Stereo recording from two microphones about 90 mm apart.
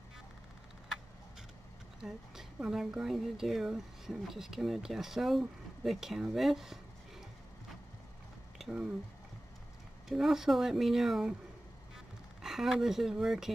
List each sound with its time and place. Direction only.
2.0 s speech: 5° right (ahead or behind)
8.5 s speech: 5° right (ahead or behind)
10.0 s speech: 5° right (ahead or behind)
12.4 s speech: 5° right (ahead or behind)